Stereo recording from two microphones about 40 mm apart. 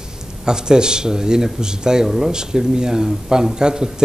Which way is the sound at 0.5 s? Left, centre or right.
Centre.